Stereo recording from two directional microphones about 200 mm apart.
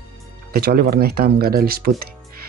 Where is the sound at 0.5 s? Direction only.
50° right (ahead or behind).